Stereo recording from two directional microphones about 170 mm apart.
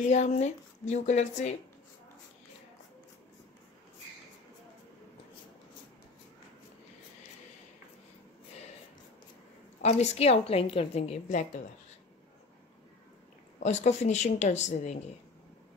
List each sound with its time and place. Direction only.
0.0 s speech: 45° left (ahead or behind)
9.8 s a woman's voice: 40° left (ahead or behind)
13.6 s a woman's voice: 40° left (ahead or behind)